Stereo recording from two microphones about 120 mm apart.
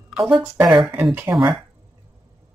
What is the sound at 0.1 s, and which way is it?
Speech, centre (ahead or behind).